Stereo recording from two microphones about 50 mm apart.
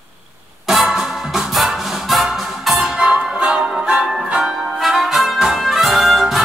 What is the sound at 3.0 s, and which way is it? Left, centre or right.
Music, centre.